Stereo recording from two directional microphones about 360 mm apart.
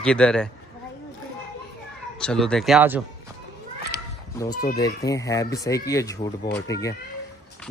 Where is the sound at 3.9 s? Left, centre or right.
Left.